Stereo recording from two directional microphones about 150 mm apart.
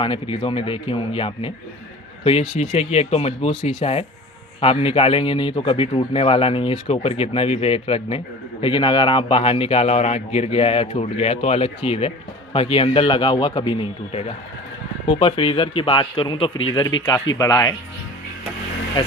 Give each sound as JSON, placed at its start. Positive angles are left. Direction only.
{"t": 0.0, "sound": "speech", "side_deg": 35}
{"t": 2.5, "sound": "speech", "side_deg": 45}
{"t": 19.0, "sound": "speech", "side_deg": 30}